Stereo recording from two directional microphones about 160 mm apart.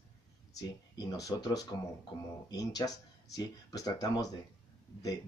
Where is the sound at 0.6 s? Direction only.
25° left (ahead or behind).